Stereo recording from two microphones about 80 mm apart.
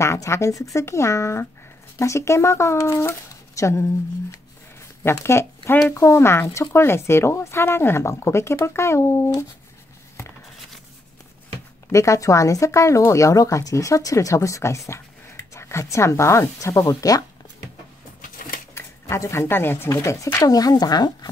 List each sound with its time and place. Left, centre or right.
0.0 s speech: left
4.7 s a sound: left
5.9 s speech: left
11.9 s speech: left
18.8 s speech: left
19.9 s speech: left